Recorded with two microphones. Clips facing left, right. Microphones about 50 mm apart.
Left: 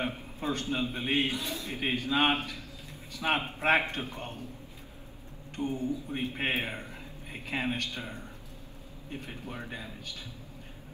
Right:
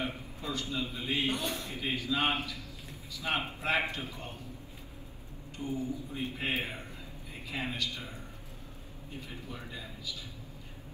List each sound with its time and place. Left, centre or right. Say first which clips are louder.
0.0 s a man's voice: left 4 dB; left
1.3 s a man's voice: right 1 dB; right
1.7 s a man's voice: left 7 dB; left
5.6 s a man's voice: left 3 dB; left